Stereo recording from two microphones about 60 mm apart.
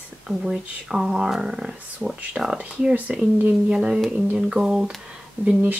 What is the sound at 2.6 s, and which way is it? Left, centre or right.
Speech, right.